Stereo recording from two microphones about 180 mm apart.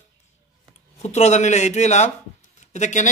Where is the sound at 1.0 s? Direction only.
40° left (ahead or behind).